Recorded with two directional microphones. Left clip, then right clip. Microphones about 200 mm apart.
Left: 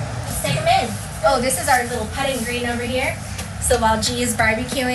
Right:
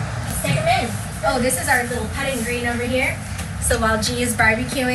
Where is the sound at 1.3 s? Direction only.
55° left (ahead or behind).